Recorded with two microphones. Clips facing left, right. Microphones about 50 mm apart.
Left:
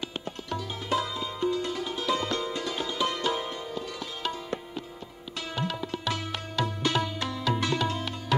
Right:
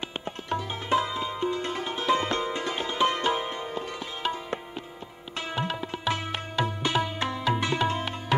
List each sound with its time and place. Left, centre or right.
0.5 s music: right
5.5 s tabla: right